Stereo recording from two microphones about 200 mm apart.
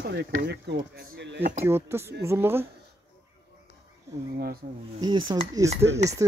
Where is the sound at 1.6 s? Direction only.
10° right (ahead or behind).